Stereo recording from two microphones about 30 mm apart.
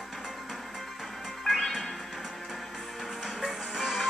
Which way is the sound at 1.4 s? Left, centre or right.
Centre.